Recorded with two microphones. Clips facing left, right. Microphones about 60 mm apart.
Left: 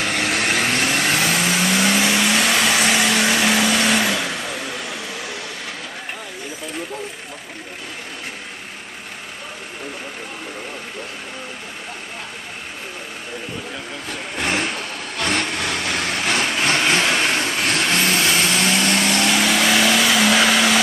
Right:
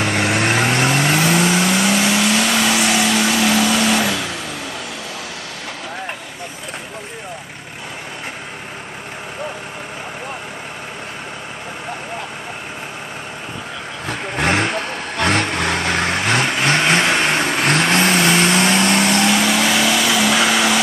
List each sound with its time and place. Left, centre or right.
0.0 s vehicle: centre
14.0 s vehicle: right
15.3 s vehicle: right
16.3 s vehicle: centre